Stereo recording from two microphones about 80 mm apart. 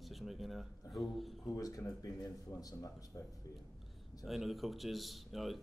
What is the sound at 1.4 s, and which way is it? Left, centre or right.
Speech, left.